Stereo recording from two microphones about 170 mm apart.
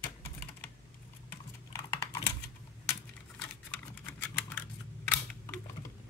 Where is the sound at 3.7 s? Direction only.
10° left (ahead or behind).